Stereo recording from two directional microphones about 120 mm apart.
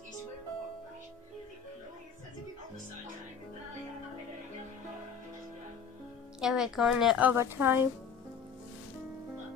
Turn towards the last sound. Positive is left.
turn(degrees=-20)  # may be behind; listen again after turning